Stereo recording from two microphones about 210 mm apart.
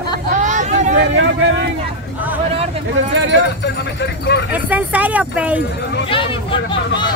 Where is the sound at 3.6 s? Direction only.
55° left (ahead or behind).